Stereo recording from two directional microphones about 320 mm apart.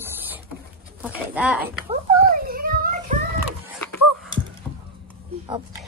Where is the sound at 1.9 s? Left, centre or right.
Right.